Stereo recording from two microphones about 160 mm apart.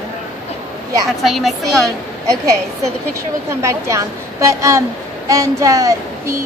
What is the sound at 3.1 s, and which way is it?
A woman's voice, 15° right (ahead or behind).